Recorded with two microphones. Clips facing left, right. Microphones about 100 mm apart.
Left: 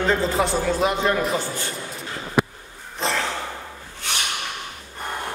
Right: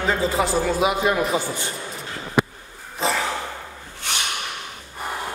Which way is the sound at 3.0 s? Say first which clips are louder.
Right 1 dB; 5° right (ahead or behind).